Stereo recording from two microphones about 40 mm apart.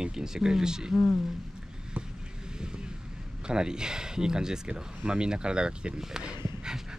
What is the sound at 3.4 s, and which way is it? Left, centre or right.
Speech, right.